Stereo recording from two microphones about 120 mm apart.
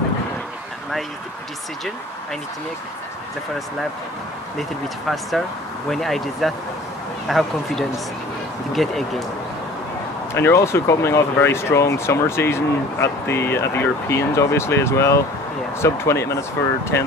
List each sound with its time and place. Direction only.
4.6 s speech: centre (ahead or behind)
10.3 s speech: 20° left (ahead or behind)